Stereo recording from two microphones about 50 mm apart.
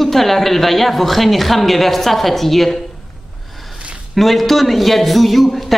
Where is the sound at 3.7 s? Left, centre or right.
Centre.